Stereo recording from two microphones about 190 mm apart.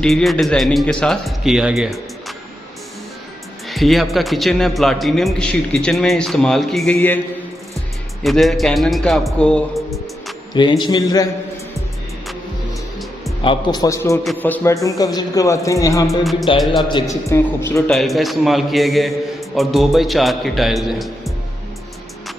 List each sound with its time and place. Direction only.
0.0 s a man's voice: centre (ahead or behind)
3.6 s a man's voice: centre (ahead or behind)
8.2 s a man's voice: centre (ahead or behind)
10.5 s a man's voice: 25° left (ahead or behind)
13.4 s a man's voice: 25° left (ahead or behind); by 21.3 s centre (ahead or behind)